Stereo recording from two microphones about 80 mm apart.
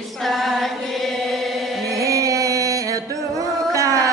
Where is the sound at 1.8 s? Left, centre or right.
Right.